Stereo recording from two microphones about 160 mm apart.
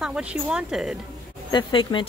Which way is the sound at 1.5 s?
30° left (ahead or behind).